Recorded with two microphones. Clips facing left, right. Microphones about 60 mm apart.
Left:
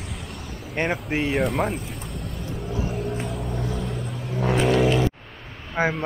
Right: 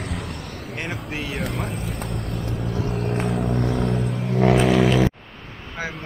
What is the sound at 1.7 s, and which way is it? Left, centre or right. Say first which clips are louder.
Vehicle: right 3 dB; right.